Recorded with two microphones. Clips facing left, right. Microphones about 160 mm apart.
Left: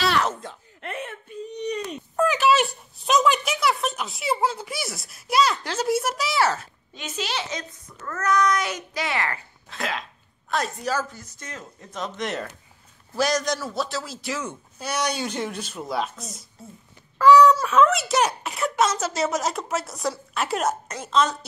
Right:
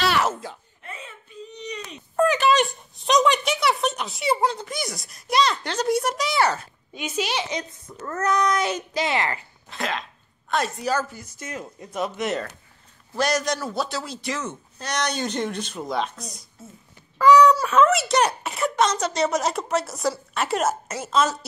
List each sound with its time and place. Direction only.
0.0 s wail: 5° right (ahead or behind)
0.7 s whimper: 75° left (ahead or behind); by 2.0 s 50° left (ahead or behind)
2.1 s a sound: 5° left (ahead or behind)
6.9 s speech: 10° right (ahead or behind)
8.0 s a sound: 30° right (ahead or behind)
9.7 s dog: centre (ahead or behind)
10.5 s speech: centre (ahead or behind)